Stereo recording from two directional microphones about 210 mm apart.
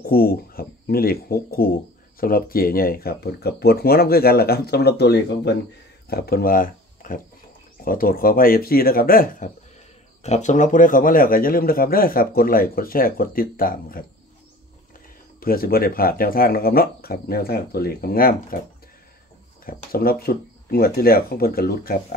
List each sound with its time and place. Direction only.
0.0 s speech: 45° left (ahead or behind)
15.4 s speech: 45° left (ahead or behind)
19.6 s speech: 45° left (ahead or behind)